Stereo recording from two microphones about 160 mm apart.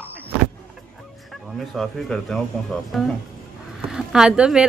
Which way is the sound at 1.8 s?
5° left (ahead or behind).